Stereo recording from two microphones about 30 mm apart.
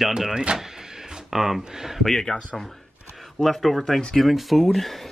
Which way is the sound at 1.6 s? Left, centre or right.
Centre.